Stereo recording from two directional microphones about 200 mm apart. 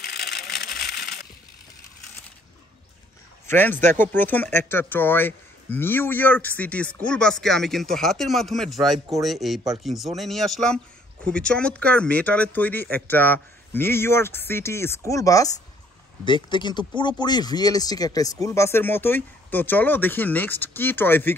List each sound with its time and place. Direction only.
0.0 s vehicle: 50° left (ahead or behind)
3.4 s a man's voice: 10° left (ahead or behind)